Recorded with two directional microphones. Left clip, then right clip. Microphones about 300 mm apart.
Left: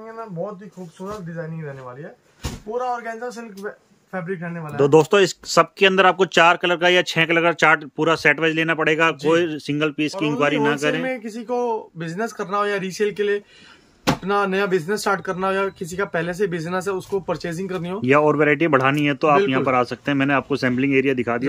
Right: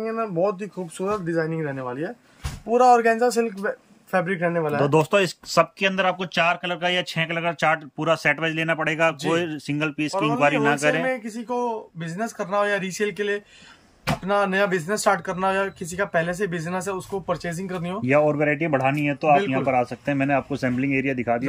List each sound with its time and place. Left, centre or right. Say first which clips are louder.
1.0 s speech: right 7 dB; right
2.7 s speech: right 9 dB; right
4.7 s speech: left 7 dB; centre